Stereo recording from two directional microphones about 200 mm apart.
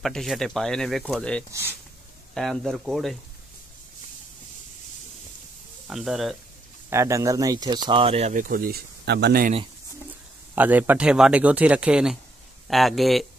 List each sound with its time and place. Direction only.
0.0 s speech: centre (ahead or behind)
1.5 s speech: 10° right (ahead or behind)
2.3 s speech: centre (ahead or behind)
5.9 s speech: centre (ahead or behind)
6.9 s speech: 15° right (ahead or behind); by 9.5 s 55° right (ahead or behind)
10.5 s speech: 10° right (ahead or behind)